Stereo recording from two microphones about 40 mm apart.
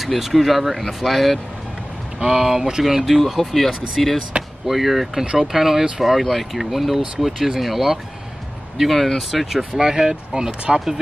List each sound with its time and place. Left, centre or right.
0.0 s speech: centre
2.1 s speech: centre
3.3 s speech: centre
5.2 s speech: right
5.5 s speech: centre
9.6 s speech: centre